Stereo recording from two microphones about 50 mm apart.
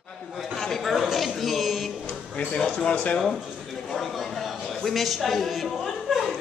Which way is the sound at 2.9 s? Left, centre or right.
Left.